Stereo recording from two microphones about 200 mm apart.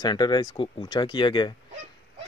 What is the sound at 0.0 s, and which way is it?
Speech, 20° left (ahead or behind).